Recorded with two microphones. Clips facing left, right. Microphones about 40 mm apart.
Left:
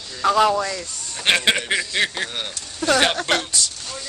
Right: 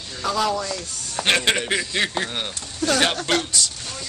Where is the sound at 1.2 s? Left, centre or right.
Centre.